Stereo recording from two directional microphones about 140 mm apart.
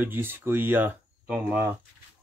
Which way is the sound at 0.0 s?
15° right (ahead or behind).